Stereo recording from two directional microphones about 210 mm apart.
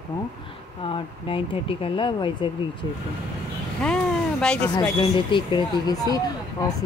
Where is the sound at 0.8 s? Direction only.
25° left (ahead or behind).